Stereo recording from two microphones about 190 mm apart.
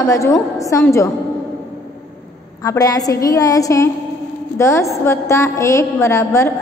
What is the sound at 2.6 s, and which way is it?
A woman's voice, 20° left (ahead or behind).